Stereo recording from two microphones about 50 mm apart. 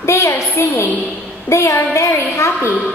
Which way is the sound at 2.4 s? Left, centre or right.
Left.